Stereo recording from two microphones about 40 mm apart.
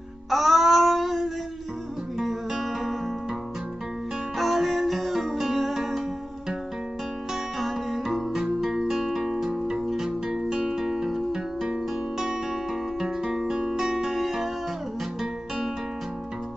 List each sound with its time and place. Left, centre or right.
0.3 s a sound: centre
2.6 s music: centre
4.4 s music: centre
7.5 s music: centre
13.0 s music: centre